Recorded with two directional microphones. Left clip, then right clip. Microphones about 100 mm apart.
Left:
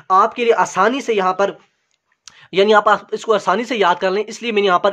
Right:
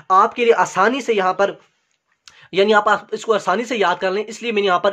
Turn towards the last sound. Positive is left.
turn(degrees=20)  # may be behind; listen again after turning